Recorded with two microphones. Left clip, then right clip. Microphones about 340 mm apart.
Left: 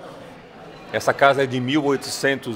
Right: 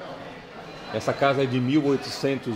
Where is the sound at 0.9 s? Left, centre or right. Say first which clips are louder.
Left 6 dB; left.